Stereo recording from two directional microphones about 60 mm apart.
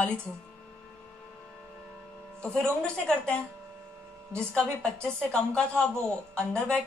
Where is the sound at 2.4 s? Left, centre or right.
Centre.